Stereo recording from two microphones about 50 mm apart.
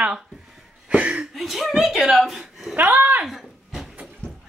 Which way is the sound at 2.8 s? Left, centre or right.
Right.